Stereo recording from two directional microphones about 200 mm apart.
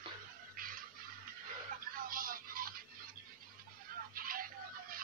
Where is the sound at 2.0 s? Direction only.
45° right (ahead or behind).